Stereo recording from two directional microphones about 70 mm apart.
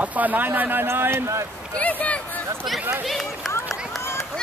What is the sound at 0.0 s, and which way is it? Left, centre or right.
Speech, right.